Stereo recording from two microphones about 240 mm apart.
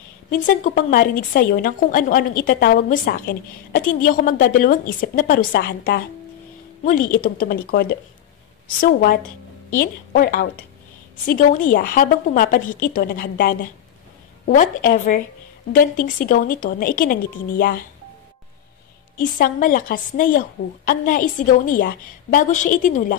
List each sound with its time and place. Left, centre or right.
0.3 s speech: left
8.8 s speech: left
19.1 s speech: left